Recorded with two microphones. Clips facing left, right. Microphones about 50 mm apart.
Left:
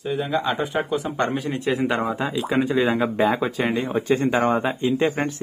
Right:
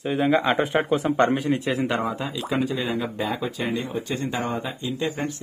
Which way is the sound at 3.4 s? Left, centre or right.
Left.